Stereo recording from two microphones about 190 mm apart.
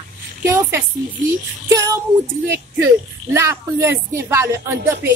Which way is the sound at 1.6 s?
15° right (ahead or behind).